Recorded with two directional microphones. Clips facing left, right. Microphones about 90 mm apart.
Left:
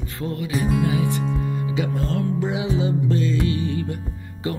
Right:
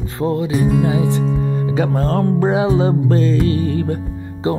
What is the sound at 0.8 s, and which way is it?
Speech, 25° right (ahead or behind).